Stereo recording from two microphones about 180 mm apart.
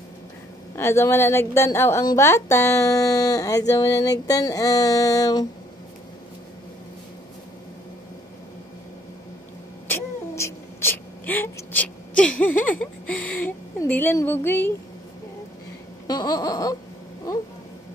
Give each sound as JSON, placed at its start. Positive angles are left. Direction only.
{"t": 0.7, "sound": "a woman's voice", "side_deg": 15}
{"t": 9.8, "sound": "owl", "side_deg": 15}
{"t": 16.1, "sound": "laughter", "side_deg": 20}